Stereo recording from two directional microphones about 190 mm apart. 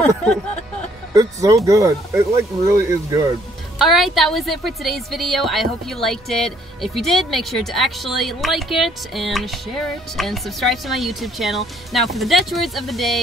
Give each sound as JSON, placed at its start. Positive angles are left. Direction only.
{"t": 1.1, "sound": "speech", "side_deg": -15}
{"t": 3.7, "sound": "a woman's voice", "side_deg": 0}